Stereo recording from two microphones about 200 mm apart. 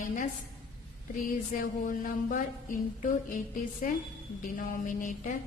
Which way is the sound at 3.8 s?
45° left (ahead or behind).